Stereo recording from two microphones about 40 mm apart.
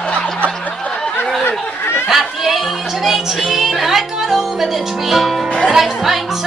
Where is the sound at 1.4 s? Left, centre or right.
Left.